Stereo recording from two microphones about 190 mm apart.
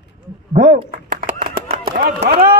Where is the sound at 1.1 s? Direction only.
45° right (ahead or behind).